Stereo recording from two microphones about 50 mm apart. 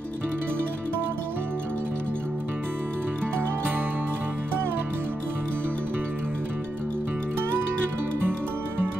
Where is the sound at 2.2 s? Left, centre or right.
Right.